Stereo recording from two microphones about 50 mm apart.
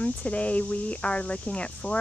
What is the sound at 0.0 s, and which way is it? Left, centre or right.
Speech, left.